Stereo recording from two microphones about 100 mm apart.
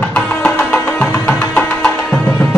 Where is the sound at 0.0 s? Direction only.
10° left (ahead or behind).